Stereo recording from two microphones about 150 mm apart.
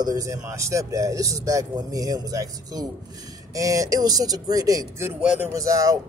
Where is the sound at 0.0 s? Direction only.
25° right (ahead or behind).